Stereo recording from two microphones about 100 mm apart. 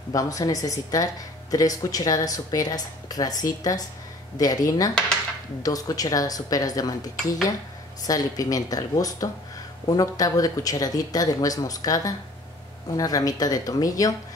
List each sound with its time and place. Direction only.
0.1 s speech: 35° left (ahead or behind)